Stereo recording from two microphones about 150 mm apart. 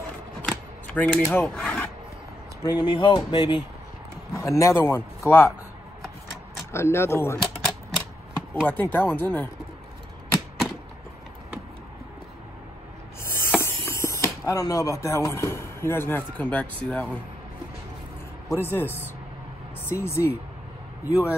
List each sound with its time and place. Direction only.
0.4 s rub: 10° left (ahead or behind)
2.6 s speech: 30° left (ahead or behind)
4.3 s a man's voice: 20° left (ahead or behind)
6.7 s a man's voice: 15° left (ahead or behind)
8.6 s speech: 10° left (ahead or behind)
13.6 s speech: 15° left (ahead or behind)
18.5 s a man's voice: 15° left (ahead or behind)